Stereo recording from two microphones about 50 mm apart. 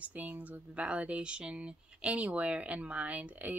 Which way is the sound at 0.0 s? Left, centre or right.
Right.